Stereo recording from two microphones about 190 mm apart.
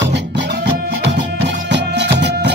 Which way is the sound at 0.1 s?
65° right (ahead or behind).